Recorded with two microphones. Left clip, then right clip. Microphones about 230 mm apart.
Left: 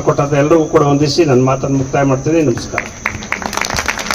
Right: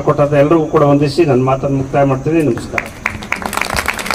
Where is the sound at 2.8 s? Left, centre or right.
Centre.